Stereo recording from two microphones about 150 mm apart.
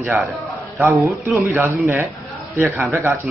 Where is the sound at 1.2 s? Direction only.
15° right (ahead or behind).